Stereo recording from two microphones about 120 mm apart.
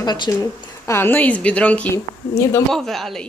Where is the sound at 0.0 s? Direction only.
35° left (ahead or behind).